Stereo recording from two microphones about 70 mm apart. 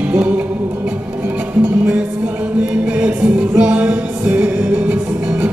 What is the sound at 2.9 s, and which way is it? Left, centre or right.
Music, centre.